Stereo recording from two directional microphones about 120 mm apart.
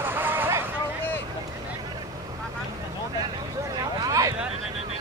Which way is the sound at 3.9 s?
30° right (ahead or behind).